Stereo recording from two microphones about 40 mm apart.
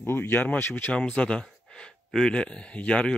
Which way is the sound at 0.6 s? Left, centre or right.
Left.